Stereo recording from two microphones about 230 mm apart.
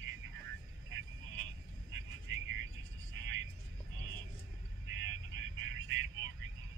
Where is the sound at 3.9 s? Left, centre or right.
Right.